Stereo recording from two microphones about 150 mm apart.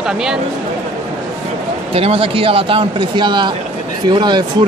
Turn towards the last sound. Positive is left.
turn(degrees=-30)  # may be behind; listen again after turning